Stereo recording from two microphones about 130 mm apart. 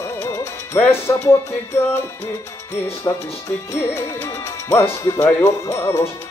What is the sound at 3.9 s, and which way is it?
Speech, 20° left (ahead or behind).